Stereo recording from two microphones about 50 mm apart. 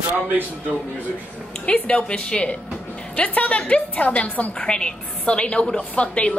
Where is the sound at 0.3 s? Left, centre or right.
Right.